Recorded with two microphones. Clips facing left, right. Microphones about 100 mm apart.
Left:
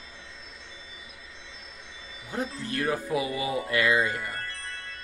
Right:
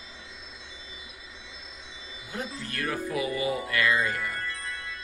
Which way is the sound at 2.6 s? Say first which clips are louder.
Left 2 dB; 25° left (ahead or behind).